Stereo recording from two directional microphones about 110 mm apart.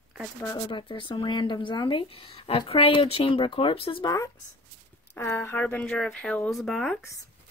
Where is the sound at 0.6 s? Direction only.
50° left (ahead or behind).